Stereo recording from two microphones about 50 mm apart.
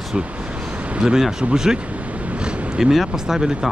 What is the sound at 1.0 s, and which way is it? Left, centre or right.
Speech, centre.